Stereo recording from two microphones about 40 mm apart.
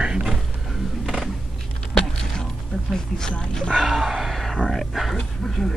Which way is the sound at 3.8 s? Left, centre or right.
Centre.